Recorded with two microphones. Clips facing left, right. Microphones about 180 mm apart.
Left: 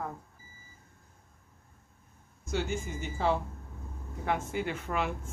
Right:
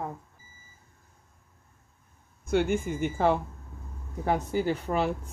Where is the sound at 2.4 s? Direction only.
55° right (ahead or behind).